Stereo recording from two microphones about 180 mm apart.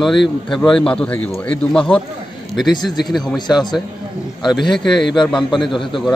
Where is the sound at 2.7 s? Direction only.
25° left (ahead or behind).